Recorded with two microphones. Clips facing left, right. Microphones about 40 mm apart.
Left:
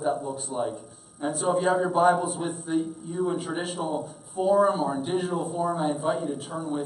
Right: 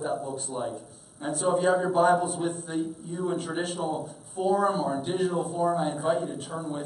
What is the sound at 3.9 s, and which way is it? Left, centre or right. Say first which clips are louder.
Speech: left 3 dB; left.